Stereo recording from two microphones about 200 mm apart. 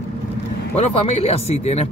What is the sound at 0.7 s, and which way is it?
Speech, 30° left (ahead or behind).